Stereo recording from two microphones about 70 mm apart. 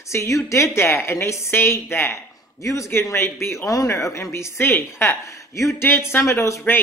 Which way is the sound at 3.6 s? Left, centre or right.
Left.